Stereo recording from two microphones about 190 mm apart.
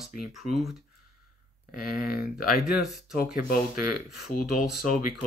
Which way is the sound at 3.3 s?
50° left (ahead or behind).